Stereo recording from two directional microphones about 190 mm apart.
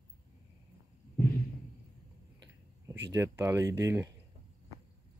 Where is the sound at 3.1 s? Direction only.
15° right (ahead or behind).